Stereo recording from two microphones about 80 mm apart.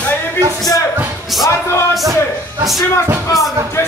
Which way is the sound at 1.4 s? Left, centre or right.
Left.